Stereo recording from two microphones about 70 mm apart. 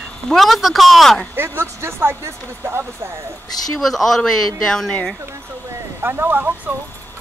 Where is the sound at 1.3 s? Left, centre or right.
Right.